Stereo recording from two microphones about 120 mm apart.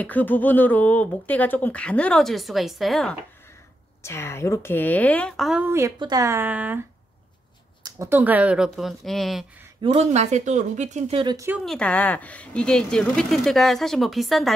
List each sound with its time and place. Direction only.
0.0 s speech: 15° left (ahead or behind)
4.0 s speech: 20° left (ahead or behind); by 5.6 s 5° left (ahead or behind)
5.6 s speech: 20° right (ahead or behind)
5.9 s speech: 35° right (ahead or behind); by 6.8 s 15° right (ahead or behind)
8.1 s speech: 15° right (ahead or behind)
9.8 s speech: 70° right (ahead or behind)
11.1 s speech: 45° right (ahead or behind)
11.6 s speech: 5° left (ahead or behind)